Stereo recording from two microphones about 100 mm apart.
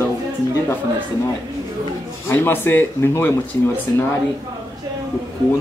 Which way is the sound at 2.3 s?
20° left (ahead or behind).